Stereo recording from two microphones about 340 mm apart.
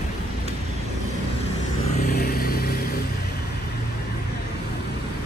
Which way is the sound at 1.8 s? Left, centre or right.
Centre.